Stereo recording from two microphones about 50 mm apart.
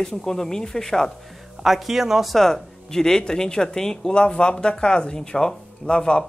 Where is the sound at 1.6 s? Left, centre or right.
Centre.